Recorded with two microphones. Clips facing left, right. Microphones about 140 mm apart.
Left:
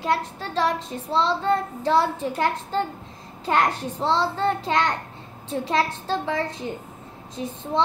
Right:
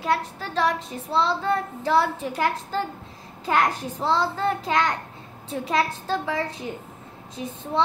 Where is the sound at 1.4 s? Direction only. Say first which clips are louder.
Left 2 dB; 30° left (ahead or behind).